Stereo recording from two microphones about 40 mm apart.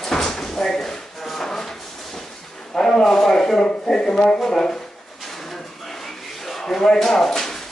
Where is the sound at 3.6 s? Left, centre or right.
Centre.